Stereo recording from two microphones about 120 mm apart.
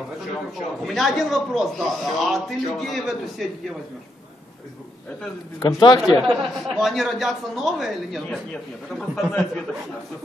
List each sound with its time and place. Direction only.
0.8 s a man's voice: centre (ahead or behind)
5.6 s speech: 35° left (ahead or behind)
6.0 s a man's voice: centre (ahead or behind)